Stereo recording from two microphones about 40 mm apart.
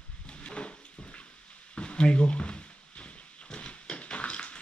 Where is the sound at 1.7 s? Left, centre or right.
Left.